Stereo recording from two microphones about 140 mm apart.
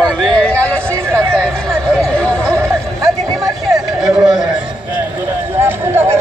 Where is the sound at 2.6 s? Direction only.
20° right (ahead or behind).